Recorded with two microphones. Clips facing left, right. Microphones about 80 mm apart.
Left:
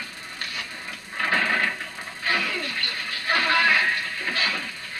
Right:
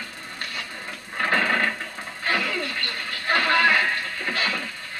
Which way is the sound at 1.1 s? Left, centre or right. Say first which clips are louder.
Right 1 dB; centre.